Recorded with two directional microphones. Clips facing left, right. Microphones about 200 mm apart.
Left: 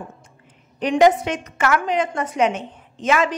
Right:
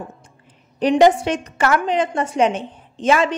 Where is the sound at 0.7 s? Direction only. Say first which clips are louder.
Right 2 dB; 35° right (ahead or behind).